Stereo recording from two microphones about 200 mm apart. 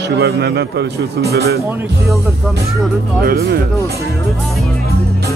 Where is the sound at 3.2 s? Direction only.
55° right (ahead or behind).